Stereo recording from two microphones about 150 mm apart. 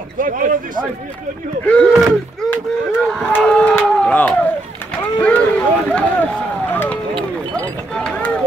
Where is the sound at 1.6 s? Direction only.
5° left (ahead or behind).